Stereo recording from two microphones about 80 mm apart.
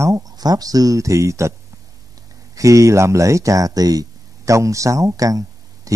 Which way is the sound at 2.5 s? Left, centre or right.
Right.